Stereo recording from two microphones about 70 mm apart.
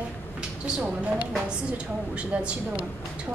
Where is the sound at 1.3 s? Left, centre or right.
Centre.